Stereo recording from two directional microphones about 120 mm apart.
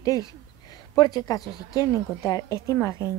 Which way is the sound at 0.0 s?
30° left (ahead or behind).